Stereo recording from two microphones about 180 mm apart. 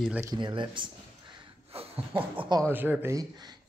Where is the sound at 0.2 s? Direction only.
20° right (ahead or behind).